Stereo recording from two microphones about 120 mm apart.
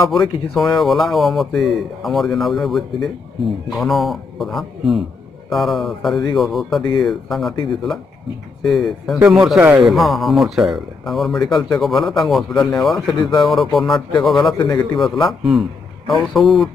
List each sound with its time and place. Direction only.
0.1 s speech: centre (ahead or behind)
8.6 s speech: centre (ahead or behind)
14.6 s a man's voice: 40° left (ahead or behind)
15.0 s speech: centre (ahead or behind)